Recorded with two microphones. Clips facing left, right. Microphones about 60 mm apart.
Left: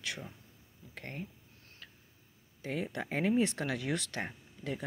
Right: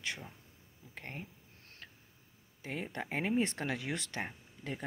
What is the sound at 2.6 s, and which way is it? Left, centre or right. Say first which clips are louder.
Speech: left 3 dB; right.